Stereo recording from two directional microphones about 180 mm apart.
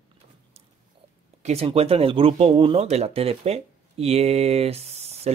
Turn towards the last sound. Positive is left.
turn(degrees=-35)  # may be behind; listen again after turning